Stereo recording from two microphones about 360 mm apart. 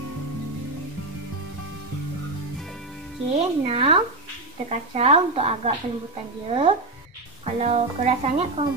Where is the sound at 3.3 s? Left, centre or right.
Centre.